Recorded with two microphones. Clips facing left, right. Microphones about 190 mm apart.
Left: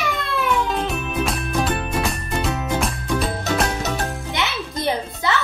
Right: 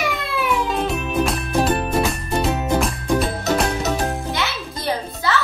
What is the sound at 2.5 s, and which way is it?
Music, 30° right (ahead or behind).